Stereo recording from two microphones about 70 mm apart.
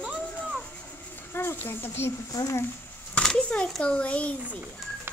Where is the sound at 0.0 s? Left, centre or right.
Centre.